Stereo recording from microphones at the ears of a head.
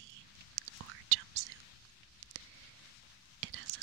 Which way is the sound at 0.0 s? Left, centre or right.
Right.